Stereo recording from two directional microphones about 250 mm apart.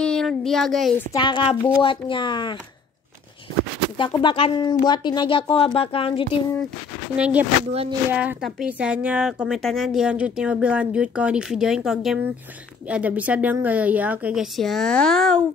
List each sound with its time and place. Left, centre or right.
0.0 s speech: centre
1.1 s speech: centre
4.0 s speech: centre
7.2 s a woman's voice: centre